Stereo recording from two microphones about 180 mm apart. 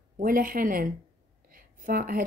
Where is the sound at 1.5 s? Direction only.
50° right (ahead or behind).